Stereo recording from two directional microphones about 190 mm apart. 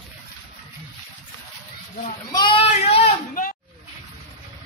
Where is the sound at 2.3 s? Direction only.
25° left (ahead or behind).